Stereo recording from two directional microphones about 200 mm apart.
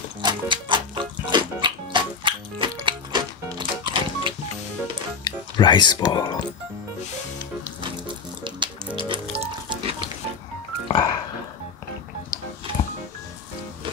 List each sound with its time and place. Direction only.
0.2 s music: 25° right (ahead or behind)
5.2 s speech: 20° left (ahead or behind)
8.5 s music: 25° right (ahead or behind)
10.9 s music: 20° left (ahead or behind)